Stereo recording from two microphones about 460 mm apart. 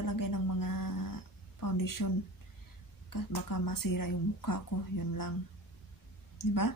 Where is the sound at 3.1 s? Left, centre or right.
Left.